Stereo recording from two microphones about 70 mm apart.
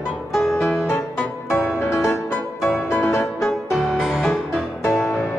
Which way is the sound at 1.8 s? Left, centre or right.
Left.